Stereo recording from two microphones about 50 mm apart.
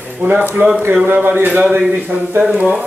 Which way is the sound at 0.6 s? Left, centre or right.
Right.